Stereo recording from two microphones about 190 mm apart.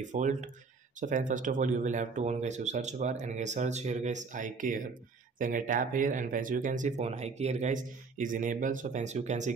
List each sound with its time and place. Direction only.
0.0 s speech: 40° right (ahead or behind)